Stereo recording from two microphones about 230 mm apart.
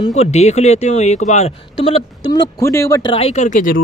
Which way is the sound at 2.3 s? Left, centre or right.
Centre.